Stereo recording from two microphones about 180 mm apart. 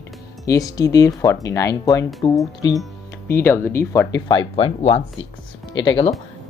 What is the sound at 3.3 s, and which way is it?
Speech, 15° left (ahead or behind).